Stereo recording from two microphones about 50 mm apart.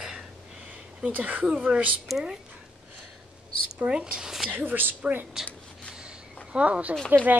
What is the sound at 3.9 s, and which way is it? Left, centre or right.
Speech, right.